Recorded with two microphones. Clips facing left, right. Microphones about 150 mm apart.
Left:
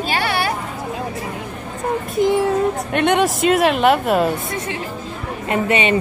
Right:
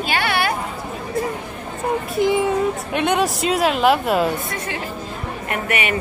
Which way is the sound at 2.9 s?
Centre (ahead or behind).